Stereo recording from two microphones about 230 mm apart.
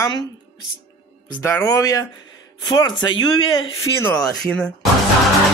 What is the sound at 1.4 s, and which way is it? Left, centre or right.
Speech, centre.